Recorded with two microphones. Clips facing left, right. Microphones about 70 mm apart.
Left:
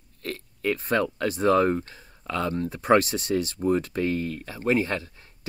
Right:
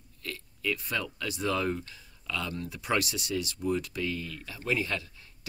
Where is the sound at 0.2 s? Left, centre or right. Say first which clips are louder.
Left 6 dB; left.